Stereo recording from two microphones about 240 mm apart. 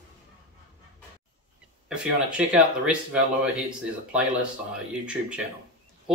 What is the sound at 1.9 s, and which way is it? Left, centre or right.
Speech, centre.